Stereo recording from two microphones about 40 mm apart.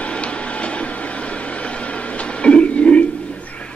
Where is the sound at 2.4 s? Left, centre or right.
Left.